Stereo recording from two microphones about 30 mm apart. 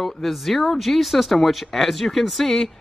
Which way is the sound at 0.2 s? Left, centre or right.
Centre.